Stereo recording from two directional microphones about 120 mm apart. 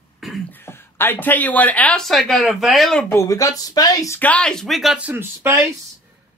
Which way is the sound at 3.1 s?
25° left (ahead or behind).